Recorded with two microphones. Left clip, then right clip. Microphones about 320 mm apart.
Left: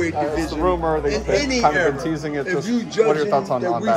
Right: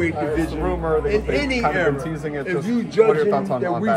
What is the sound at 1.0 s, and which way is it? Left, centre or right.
Speech, right.